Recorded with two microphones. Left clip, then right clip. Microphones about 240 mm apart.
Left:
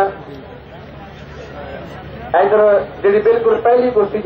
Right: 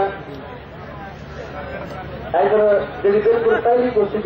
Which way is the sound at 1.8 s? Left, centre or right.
Centre.